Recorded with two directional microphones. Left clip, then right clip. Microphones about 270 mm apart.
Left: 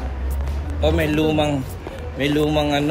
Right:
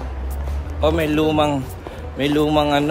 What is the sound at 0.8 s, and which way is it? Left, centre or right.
Speech, centre.